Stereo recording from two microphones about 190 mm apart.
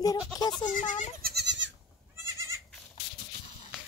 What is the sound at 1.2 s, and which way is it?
Goat, 60° right (ahead or behind).